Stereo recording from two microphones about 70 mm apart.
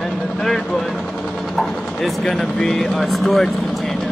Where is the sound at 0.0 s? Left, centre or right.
Centre.